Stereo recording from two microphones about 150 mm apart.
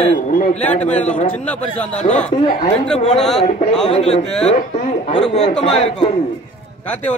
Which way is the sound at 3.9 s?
45° left (ahead or behind).